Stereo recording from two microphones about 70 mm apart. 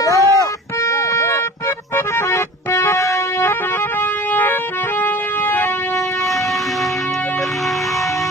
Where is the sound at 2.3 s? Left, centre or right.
Left.